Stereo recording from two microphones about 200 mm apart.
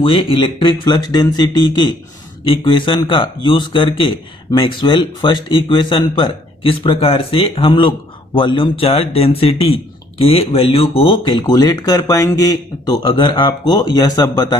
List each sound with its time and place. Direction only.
0.0 s speech: 25° left (ahead or behind)